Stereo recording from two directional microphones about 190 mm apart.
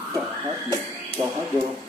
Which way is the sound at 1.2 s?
30° right (ahead or behind).